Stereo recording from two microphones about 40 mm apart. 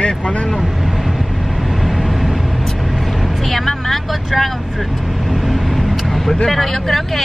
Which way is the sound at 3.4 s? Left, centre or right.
Centre.